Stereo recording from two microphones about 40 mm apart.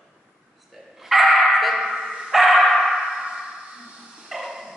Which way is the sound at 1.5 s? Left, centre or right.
Centre.